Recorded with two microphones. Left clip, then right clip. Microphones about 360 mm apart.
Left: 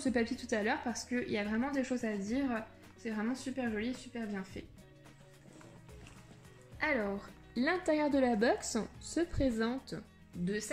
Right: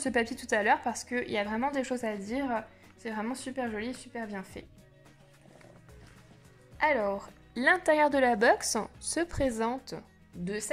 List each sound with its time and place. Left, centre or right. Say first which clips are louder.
0.0 s a woman's voice: right 4 dB; centre
6.8 s speech: right 7 dB; centre